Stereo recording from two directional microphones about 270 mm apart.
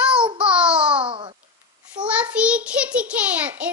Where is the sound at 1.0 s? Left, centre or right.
Centre.